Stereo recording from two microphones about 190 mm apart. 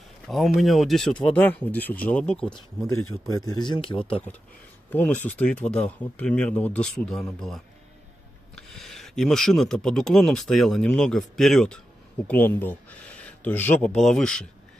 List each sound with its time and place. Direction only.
0.3 s speech: centre (ahead or behind)
2.9 s speech: 20° left (ahead or behind)
4.9 s speech: 10° left (ahead or behind)